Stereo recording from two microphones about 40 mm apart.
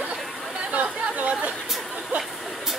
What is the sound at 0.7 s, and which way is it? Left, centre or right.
Chatter, right.